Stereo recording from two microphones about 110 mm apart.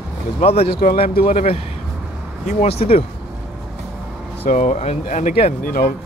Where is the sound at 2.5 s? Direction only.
80° left.